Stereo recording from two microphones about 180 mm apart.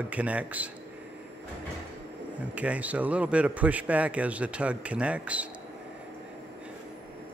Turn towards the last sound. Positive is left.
turn(degrees=-5)  # may be behind; listen again after turning